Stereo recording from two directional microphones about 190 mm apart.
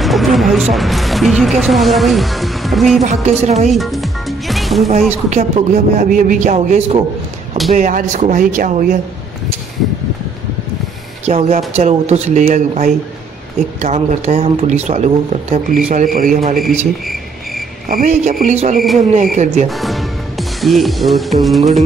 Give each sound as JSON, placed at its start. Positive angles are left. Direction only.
{"t": 0.0, "sound": "speech", "side_deg": 0}
{"t": 3.0, "sound": "speech", "side_deg": -35}
{"t": 3.6, "sound": "music", "side_deg": 0}
{"t": 5.3, "sound": "speech", "side_deg": -35}
{"t": 11.2, "sound": "a man's voice", "side_deg": -35}
{"t": 16.5, "sound": "cricket", "side_deg": 0}
{"t": 17.8, "sound": "speech", "side_deg": -45}
{"t": 19.7, "sound": "speech", "side_deg": 0}